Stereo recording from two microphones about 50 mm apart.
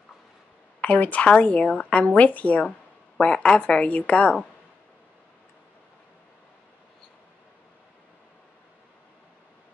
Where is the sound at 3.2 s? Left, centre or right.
Left.